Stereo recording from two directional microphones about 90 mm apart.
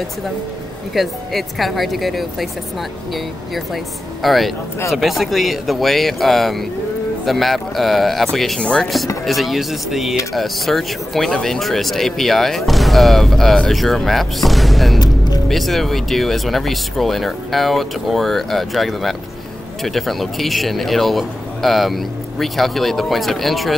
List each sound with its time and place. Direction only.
0.9 s speech: centre (ahead or behind)
3.5 s speech: centre (ahead or behind)
15.0 s music: 50° left (ahead or behind)
15.4 s speech: centre (ahead or behind)